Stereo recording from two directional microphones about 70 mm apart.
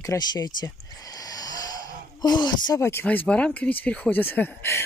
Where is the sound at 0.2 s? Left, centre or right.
Left.